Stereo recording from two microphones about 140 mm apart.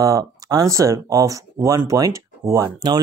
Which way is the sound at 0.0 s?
25° right (ahead or behind).